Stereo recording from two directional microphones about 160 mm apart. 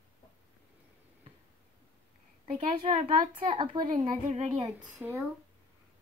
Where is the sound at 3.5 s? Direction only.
30° right (ahead or behind).